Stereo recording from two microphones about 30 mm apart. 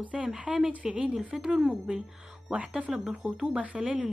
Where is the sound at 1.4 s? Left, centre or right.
Centre.